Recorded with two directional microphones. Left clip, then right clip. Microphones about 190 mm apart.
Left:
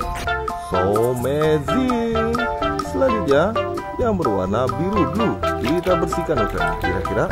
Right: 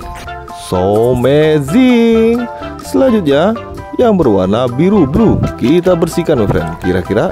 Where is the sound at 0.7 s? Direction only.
50° right (ahead or behind).